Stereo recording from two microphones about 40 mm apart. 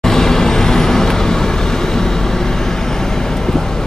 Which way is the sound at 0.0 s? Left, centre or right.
Centre.